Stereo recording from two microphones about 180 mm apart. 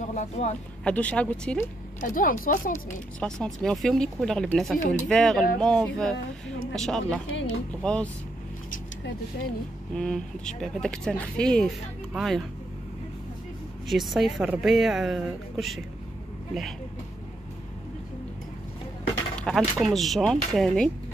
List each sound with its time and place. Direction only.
0.1 s speech: 40° left (ahead or behind)
0.8 s speech: 5° left (ahead or behind)
2.0 s a woman's voice: 45° left (ahead or behind)
2.7 s speech: 5° left (ahead or behind)
9.9 s speech: 5° left (ahead or behind)
13.8 s speech: centre (ahead or behind)
19.4 s speech: centre (ahead or behind)